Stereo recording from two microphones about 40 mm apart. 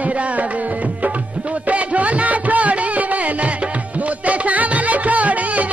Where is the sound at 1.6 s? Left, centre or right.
Right.